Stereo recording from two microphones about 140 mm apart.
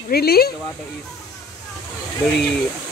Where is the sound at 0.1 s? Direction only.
90° left.